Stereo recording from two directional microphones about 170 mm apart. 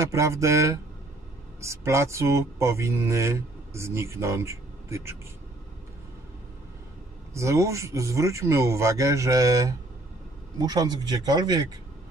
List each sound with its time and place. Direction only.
0.0 s speech: 15° right (ahead or behind)
7.3 s speech: 15° right (ahead or behind)